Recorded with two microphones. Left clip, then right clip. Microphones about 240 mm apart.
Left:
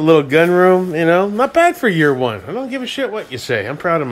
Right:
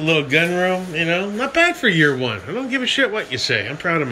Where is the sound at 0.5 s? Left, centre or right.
Left.